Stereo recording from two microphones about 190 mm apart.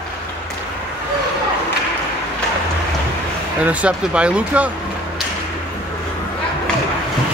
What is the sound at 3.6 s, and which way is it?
Speech, 5° right (ahead or behind).